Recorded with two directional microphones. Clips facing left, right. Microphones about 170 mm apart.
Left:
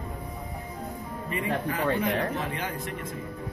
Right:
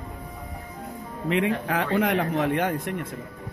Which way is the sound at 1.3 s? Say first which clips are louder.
Right 6 dB; 75° right (ahead or behind).